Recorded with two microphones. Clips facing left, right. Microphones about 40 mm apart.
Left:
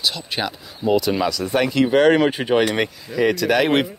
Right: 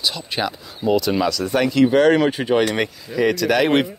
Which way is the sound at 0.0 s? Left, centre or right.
Centre.